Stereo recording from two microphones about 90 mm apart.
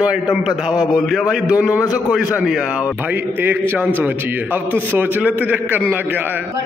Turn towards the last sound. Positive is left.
turn(degrees=-20)  # may be behind; listen again after turning